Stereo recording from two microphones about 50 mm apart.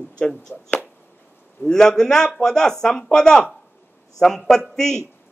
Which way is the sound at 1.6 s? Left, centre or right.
Centre.